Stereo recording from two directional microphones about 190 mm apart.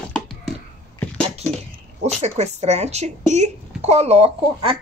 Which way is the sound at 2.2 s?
35° right (ahead or behind).